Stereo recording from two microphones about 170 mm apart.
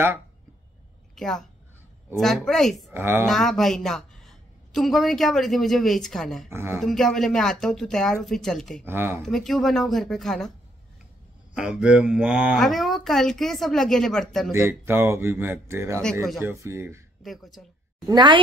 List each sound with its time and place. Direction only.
1.1 s a woman's voice: centre (ahead or behind)
2.9 s speech: 15° right (ahead or behind)
3.3 s a woman's voice: centre (ahead or behind)
6.5 s speech: 15° right (ahead or behind)
6.8 s a woman's voice: centre (ahead or behind)
8.8 s speech: 15° right (ahead or behind)
9.2 s a woman's voice: centre (ahead or behind)
11.5 s a woman's voice: 5° right (ahead or behind)
14.5 s speech: 15° right (ahead or behind)
17.2 s a woman's voice: centre (ahead or behind)
18.0 s a woman's voice: 25° right (ahead or behind)